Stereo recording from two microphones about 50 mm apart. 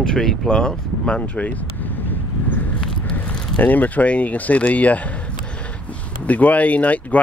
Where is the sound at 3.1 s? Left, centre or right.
Left.